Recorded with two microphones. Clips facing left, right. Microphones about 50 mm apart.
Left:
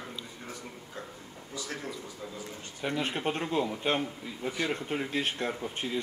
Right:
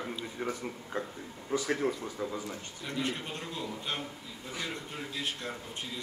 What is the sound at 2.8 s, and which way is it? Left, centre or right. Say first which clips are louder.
A man's voice: left 5 dB; left.